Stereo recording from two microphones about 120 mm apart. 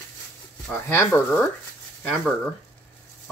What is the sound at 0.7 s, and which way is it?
Speech, 15° left (ahead or behind).